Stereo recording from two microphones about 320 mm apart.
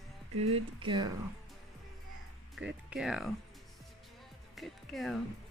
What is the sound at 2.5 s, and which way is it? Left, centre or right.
Speech, centre.